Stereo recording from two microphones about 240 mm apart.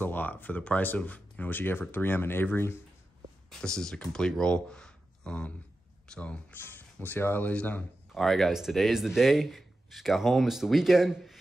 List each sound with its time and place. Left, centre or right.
0.0 s speech: centre